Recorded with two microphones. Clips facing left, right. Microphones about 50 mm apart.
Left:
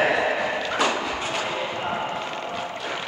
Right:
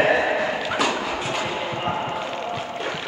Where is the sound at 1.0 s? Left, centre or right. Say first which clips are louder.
Right 1 dB; centre.